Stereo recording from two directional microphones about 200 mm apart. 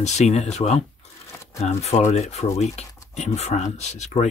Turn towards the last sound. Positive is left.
turn(degrees=35)  # may be behind; listen again after turning